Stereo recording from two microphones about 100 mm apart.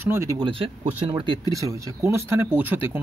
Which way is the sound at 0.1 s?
30° right (ahead or behind).